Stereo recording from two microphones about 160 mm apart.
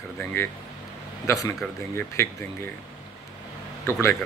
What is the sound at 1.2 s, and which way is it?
Speech, 20° left (ahead or behind).